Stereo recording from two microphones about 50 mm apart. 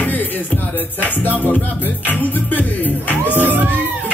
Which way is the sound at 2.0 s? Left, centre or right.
Left.